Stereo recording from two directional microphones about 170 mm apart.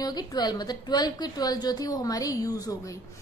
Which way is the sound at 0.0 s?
25° left (ahead or behind).